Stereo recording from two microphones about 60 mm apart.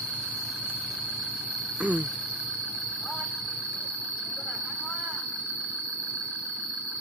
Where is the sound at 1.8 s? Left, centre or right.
Right.